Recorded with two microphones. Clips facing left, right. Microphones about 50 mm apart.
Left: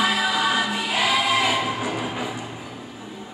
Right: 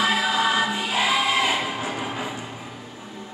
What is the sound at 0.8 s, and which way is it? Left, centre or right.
Choir, right.